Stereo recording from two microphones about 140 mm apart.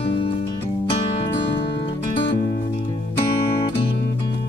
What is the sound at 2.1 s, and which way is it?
Music, 30° left (ahead or behind).